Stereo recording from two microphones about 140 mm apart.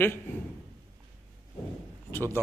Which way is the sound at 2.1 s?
15° left (ahead or behind).